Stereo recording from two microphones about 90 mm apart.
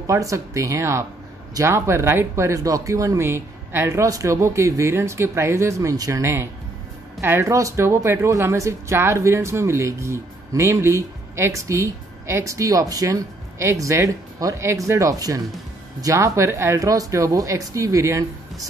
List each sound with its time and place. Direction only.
0.0 s speech: 35° right (ahead or behind)
7.4 s speech: 35° right (ahead or behind)